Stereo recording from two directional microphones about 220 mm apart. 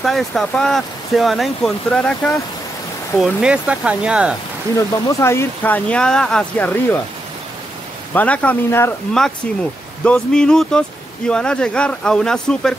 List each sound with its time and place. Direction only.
0.0 s speech: centre (ahead or behind)
4.7 s speech: 10° left (ahead or behind)
8.1 s speech: 5° left (ahead or behind)